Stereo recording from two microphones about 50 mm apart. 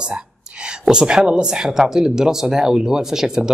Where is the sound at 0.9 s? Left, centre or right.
Centre.